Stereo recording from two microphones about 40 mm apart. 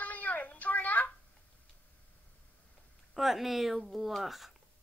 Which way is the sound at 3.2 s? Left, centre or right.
Centre.